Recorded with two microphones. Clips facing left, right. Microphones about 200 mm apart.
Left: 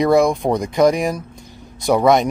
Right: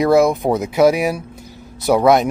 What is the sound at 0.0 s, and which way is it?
Speech, 5° right (ahead or behind).